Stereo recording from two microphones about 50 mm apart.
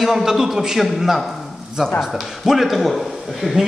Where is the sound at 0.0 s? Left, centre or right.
Centre.